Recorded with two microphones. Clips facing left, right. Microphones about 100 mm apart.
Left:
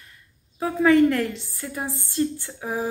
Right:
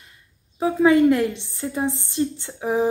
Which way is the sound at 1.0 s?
15° right (ahead or behind).